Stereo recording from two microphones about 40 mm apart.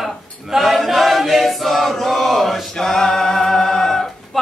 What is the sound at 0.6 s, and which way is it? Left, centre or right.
Chant, centre.